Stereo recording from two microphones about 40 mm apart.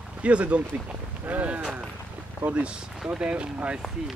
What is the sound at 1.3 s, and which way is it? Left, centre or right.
Speech, right.